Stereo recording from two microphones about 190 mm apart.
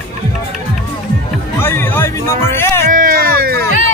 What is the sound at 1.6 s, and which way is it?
Speech, 10° left (ahead or behind).